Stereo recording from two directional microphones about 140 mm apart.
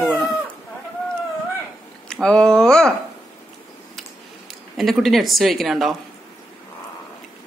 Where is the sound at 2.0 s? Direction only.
5° left (ahead or behind).